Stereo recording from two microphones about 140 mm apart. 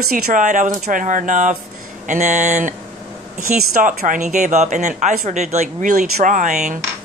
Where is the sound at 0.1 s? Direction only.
65° right (ahead or behind).